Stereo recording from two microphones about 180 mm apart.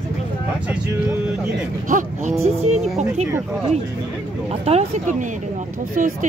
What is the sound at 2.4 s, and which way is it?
Speech, 35° right (ahead or behind).